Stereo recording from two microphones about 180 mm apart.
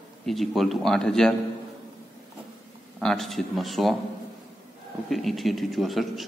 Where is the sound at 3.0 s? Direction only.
Centre (ahead or behind).